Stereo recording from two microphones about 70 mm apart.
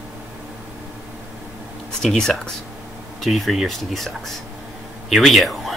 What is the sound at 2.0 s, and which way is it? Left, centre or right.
Speech, centre.